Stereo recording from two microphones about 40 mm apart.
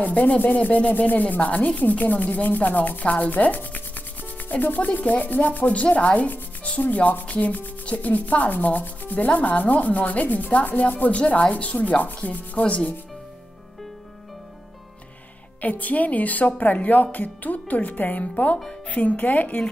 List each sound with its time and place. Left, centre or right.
0.0 s sanding: left
15.6 s sanding: left